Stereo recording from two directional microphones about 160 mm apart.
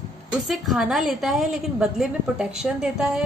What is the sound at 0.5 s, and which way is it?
A woman's voice, centre (ahead or behind).